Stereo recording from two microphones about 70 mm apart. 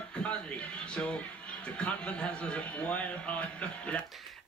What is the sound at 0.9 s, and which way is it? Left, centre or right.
Speech, centre.